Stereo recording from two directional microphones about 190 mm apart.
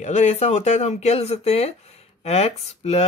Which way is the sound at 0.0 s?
40° left (ahead or behind).